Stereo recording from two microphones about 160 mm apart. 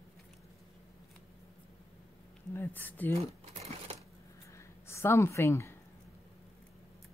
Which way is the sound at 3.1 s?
40° right (ahead or behind).